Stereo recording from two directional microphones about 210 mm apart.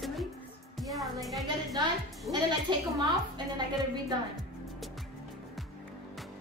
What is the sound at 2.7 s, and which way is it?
Speech, 20° right (ahead or behind).